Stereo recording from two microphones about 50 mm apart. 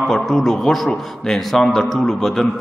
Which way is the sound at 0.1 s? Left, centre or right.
Centre.